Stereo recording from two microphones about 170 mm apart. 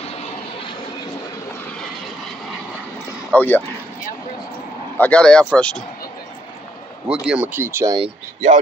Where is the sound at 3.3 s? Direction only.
10° left (ahead or behind).